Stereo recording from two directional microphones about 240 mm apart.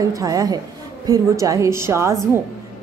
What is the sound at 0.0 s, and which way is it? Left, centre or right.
A woman's voice, centre.